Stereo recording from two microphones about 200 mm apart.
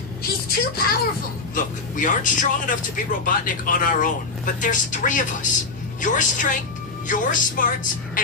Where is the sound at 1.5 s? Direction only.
40° left (ahead or behind).